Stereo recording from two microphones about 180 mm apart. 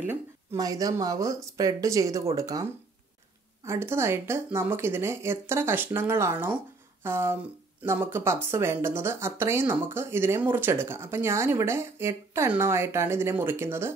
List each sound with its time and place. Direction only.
0.0 s speech: 15° right (ahead or behind)
3.6 s speech: 15° right (ahead or behind)